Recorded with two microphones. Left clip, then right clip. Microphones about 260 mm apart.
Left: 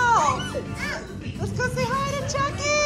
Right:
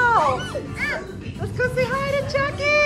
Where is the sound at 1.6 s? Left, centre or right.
Centre.